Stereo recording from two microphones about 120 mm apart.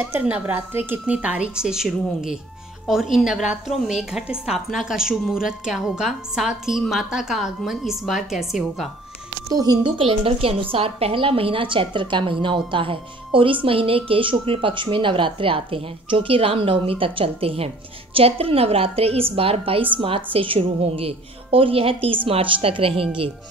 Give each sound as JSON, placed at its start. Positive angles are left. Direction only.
{"t": 0.0, "sound": "a woman's voice", "side_deg": -15}
{"t": 9.5, "sound": "speech", "side_deg": -30}
{"t": 9.9, "sound": "a woman's voice", "side_deg": -50}